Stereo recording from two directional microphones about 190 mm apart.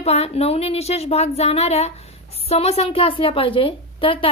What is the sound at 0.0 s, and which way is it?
A woman's voice, 35° left (ahead or behind).